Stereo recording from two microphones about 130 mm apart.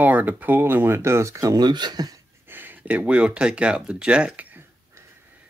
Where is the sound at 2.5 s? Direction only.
15° right (ahead or behind).